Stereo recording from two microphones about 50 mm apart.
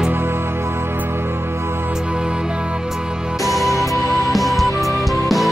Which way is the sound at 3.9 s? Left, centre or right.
Left.